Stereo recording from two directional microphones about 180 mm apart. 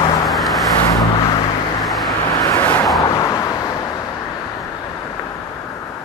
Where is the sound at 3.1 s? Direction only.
20° left (ahead or behind).